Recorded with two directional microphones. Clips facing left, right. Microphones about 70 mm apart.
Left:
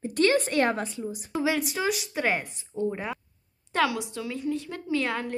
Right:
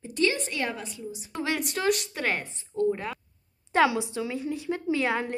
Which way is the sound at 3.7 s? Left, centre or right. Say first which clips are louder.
Right 3 dB; right.